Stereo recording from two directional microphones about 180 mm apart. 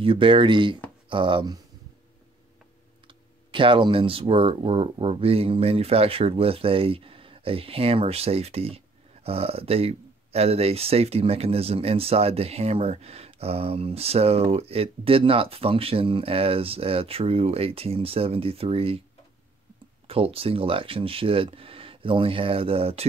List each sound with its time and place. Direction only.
0.0 s speech: 30° right (ahead or behind)
3.1 s speech: 25° right (ahead or behind)
20.1 s speech: 30° right (ahead or behind)